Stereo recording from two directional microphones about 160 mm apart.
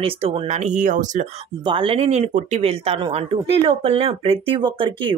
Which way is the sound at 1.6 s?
35° right (ahead or behind).